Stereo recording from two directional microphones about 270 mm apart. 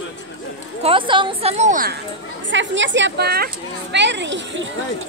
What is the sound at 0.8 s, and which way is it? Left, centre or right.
A woman's voice, centre.